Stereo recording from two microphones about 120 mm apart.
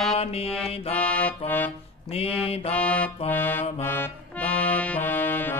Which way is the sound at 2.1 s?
55° left (ahead or behind).